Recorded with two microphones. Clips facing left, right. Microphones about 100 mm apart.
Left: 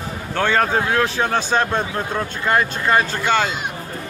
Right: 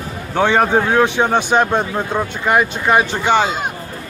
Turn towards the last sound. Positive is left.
turn(degrees=-15)  # may be behind; listen again after turning